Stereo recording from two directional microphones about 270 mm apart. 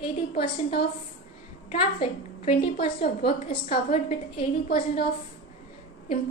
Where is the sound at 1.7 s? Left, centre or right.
Left.